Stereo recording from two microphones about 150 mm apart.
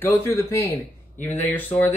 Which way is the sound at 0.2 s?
20° left (ahead or behind).